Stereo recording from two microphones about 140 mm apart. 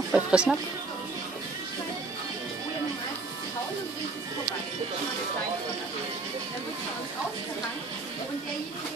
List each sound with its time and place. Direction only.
0.1 s speech: 5° right (ahead or behind)